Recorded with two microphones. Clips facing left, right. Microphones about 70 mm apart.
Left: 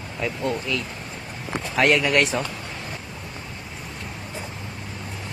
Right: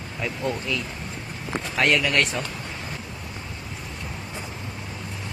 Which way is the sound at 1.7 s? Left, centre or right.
Centre.